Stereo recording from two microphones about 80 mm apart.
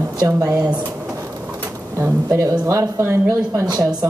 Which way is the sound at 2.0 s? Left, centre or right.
Right.